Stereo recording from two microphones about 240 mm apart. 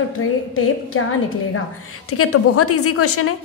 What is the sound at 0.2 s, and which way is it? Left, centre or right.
Speech, left.